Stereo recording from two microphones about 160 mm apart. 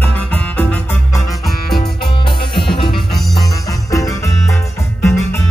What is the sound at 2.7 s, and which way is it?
Music, 30° left (ahead or behind).